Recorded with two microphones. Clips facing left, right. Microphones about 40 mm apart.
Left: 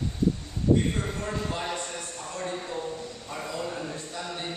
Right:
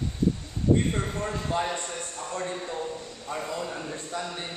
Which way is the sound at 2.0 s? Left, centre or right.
Right.